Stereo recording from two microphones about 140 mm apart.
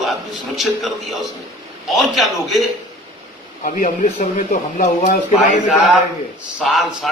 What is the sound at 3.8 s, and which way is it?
Speech, 60° left (ahead or behind).